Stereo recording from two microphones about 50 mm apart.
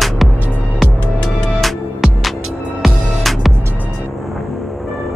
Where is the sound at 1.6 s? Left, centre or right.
Centre.